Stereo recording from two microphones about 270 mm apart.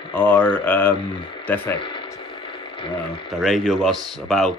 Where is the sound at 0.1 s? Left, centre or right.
Centre.